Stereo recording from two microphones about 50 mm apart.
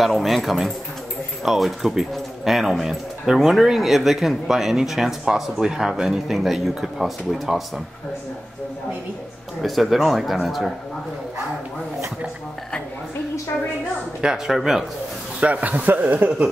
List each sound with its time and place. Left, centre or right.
0.0 s speech: centre
9.6 s speech: centre
14.2 s speech: centre
15.4 s speech: right